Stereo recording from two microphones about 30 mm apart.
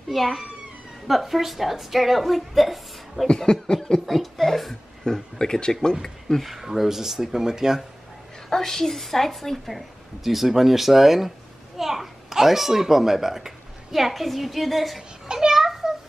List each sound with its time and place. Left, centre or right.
0.1 s a woman's voice: centre
3.3 s speech: left
4.0 s a woman's voice: centre
5.0 s speech: left
6.6 s speech: centre
8.5 s a woman's voice: centre
15.3 s a sound: centre